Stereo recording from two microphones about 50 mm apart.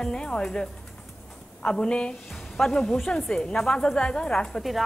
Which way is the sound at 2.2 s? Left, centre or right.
Centre.